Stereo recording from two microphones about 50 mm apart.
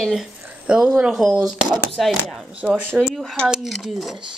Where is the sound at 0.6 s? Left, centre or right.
Centre.